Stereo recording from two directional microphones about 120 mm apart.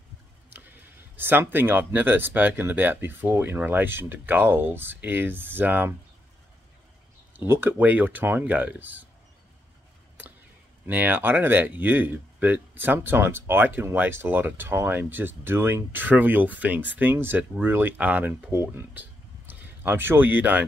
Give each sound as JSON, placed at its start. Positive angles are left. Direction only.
{"t": 1.1, "sound": "speech", "side_deg": -15}
{"t": 7.3, "sound": "speech", "side_deg": -20}
{"t": 10.9, "sound": "speech", "side_deg": -15}